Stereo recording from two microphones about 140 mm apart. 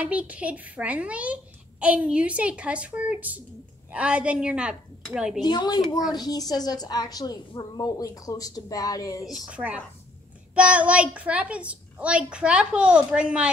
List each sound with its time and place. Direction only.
0.0 s a child's voice: 10° right (ahead or behind)
5.4 s a woman's voice: 30° left (ahead or behind)
9.5 s a child's voice: 10° right (ahead or behind)